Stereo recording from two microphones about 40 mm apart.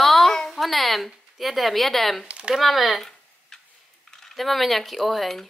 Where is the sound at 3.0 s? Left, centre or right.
Centre.